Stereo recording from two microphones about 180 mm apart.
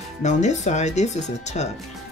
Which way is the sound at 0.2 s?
40° left (ahead or behind).